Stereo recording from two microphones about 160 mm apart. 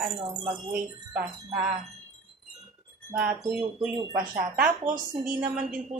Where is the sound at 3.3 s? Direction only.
20° right (ahead or behind).